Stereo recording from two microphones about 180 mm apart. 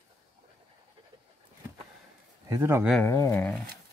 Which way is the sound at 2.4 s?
15° right (ahead or behind).